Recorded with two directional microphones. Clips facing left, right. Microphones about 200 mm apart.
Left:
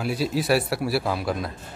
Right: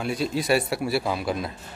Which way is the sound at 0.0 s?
5° left (ahead or behind).